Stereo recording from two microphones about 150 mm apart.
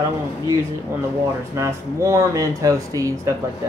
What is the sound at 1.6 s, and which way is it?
Speech, 20° right (ahead or behind).